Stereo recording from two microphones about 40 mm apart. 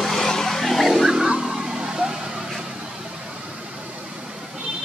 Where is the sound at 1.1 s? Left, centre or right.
Centre.